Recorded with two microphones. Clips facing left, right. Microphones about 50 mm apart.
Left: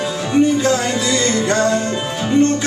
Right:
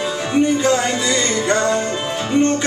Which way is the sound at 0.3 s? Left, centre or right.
Centre.